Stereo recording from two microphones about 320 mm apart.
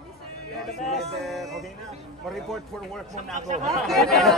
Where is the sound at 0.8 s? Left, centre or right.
Centre.